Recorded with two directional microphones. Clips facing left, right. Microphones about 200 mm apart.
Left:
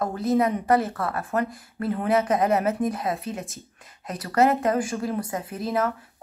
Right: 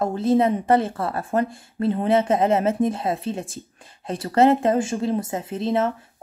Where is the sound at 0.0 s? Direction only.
25° right (ahead or behind).